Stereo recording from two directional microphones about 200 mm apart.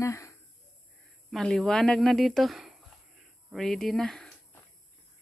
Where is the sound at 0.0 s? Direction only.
15° left (ahead or behind).